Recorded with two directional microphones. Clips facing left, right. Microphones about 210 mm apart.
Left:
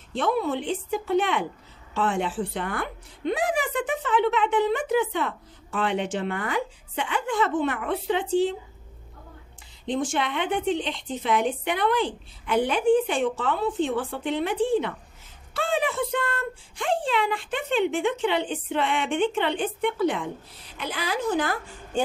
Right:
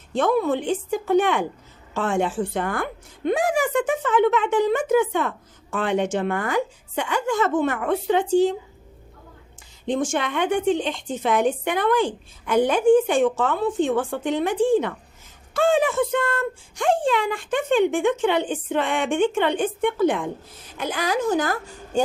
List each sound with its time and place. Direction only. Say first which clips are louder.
0.1 s a woman's voice: right 4 dB; 50° right (ahead or behind)
9.8 s a woman's voice: right 3 dB; 45° right (ahead or behind)